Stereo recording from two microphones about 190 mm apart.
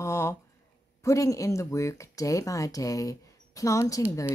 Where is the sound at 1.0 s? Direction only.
15° left (ahead or behind).